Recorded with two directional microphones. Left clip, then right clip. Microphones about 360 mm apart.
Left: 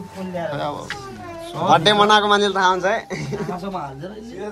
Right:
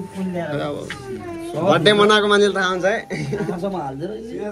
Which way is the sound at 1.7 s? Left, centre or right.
Centre.